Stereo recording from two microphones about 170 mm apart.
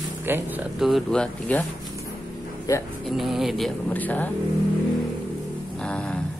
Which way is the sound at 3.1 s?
Centre (ahead or behind).